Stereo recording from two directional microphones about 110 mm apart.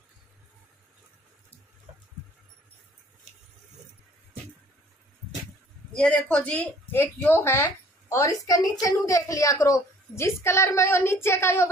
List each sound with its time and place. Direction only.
5.9 s speech: 10° left (ahead or behind); by 11.7 s 25° left (ahead or behind)